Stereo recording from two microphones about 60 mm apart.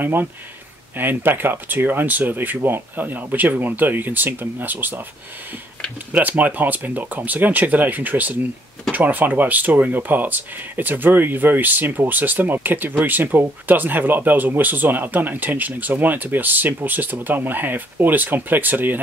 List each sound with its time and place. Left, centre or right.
0.0 s speech: right
6.1 s speech: right